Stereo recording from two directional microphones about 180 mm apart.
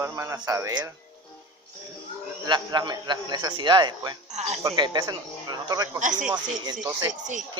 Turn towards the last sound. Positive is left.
turn(degrees=-45)  # may be behind; listen again after turning